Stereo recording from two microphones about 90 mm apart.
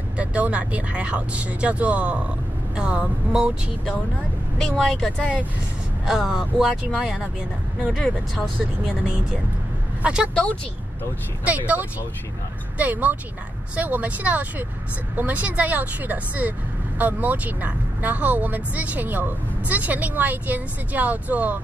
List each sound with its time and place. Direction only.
0.2 s speech: 15° right (ahead or behind)
4.6 s speech: 5° left (ahead or behind)
6.0 s speech: 10° right (ahead or behind)
7.9 s speech: 5° left (ahead or behind)
10.0 s speech: 10° right (ahead or behind)
11.4 s speech: 15° right (ahead or behind)